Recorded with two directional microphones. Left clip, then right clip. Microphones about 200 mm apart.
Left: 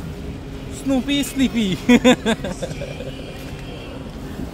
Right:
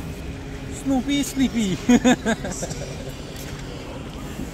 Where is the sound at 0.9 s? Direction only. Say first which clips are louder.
Left 2 dB; 30° left (ahead or behind).